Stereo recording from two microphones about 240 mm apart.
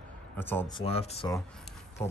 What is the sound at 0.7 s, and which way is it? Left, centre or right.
Speech, left.